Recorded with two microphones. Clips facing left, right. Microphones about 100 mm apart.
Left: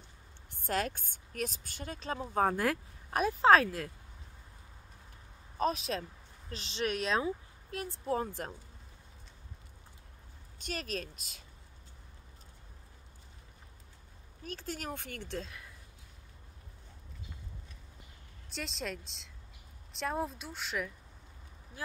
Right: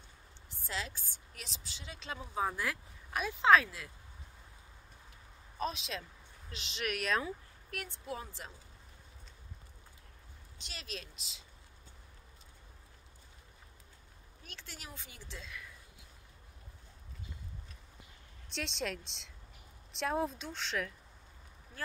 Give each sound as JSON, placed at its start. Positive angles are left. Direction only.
{"t": 0.5, "sound": "a woman's voice", "side_deg": 55}
{"t": 5.6, "sound": "speech", "side_deg": 40}
{"t": 8.1, "sound": "a woman's voice", "side_deg": 50}
{"t": 10.6, "sound": "a woman's voice", "side_deg": 45}
{"t": 14.4, "sound": "a woman's voice", "side_deg": 40}
{"t": 18.5, "sound": "speech", "side_deg": 0}